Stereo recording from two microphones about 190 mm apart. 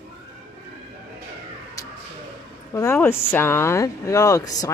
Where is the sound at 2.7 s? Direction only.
15° left (ahead or behind).